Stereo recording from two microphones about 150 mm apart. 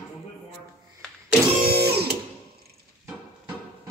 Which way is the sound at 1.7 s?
90° right.